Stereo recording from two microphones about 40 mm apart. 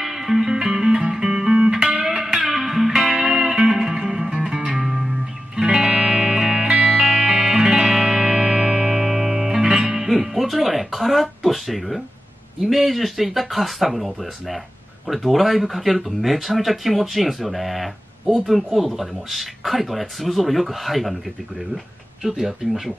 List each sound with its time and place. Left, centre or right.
0.0 s music: centre
7.0 s music: centre
12.6 s speech: centre
22.2 s speech: centre